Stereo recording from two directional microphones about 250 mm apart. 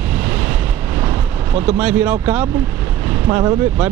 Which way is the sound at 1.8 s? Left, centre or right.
Centre.